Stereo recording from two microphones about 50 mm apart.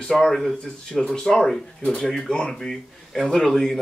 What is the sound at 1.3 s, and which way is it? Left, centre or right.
Speech, centre.